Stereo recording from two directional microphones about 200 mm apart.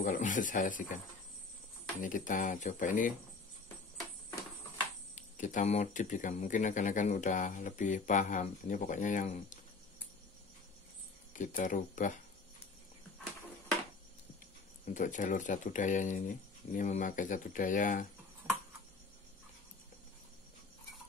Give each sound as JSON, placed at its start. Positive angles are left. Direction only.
{"t": 0.0, "sound": "speech", "side_deg": 40}
{"t": 2.0, "sound": "speech", "side_deg": 40}
{"t": 5.1, "sound": "speech", "side_deg": 40}
{"t": 11.3, "sound": "speech", "side_deg": 40}
{"t": 14.9, "sound": "speech", "side_deg": 40}